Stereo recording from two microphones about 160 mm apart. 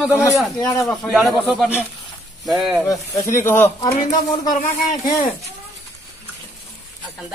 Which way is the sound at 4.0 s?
55° left (ahead or behind).